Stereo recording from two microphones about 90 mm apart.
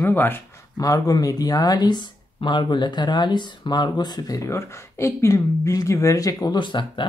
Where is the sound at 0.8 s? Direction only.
45° left (ahead or behind).